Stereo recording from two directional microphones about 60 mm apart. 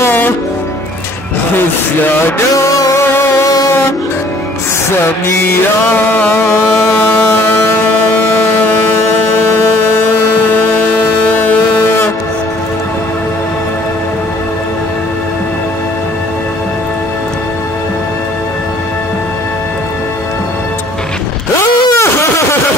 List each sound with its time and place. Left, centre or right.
2.5 s music: left
3.0 s music: left
3.4 s a sound: left
5.4 s music: left
8.5 s a sound: left
21.5 s vehicle: left